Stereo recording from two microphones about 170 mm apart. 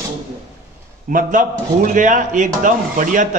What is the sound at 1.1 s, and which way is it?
A man's voice, 50° right (ahead or behind).